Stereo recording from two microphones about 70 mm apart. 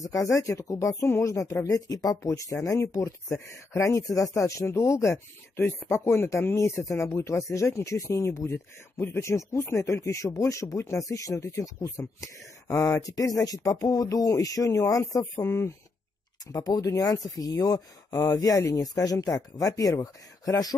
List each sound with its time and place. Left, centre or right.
0.0 s speech: left
16.4 s speech: left